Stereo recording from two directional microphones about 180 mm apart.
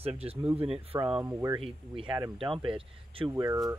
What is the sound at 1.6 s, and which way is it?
Speech, 30° right (ahead or behind).